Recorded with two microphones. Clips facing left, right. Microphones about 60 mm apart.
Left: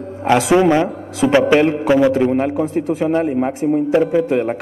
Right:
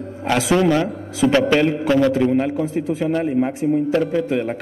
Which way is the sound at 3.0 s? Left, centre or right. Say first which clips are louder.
Left 2 dB; centre.